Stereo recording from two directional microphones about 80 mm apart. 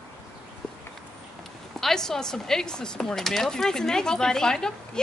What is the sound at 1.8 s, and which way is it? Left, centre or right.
Speech, centre.